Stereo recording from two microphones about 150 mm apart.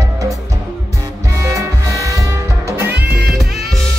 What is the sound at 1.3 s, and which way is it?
Music, 20° right (ahead or behind).